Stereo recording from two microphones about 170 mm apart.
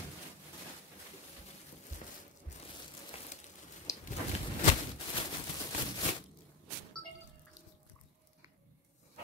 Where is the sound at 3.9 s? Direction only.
20° left (ahead or behind).